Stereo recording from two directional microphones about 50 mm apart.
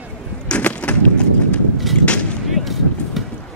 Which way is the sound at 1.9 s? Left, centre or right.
Left.